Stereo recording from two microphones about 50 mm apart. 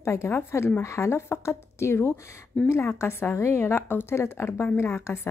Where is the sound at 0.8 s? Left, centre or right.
Left.